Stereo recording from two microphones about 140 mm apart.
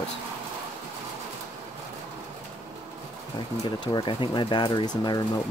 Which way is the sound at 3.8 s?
35° left (ahead or behind).